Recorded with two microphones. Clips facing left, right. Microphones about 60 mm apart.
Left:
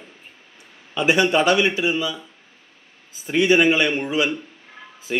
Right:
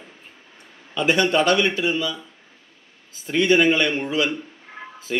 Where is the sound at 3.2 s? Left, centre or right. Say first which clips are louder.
Left 1 dB; centre.